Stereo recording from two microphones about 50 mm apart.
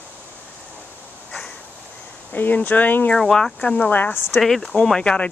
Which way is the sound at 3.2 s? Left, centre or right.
Centre.